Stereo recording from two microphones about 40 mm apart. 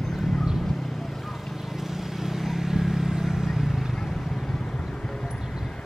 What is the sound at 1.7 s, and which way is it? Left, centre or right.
Vehicle, centre.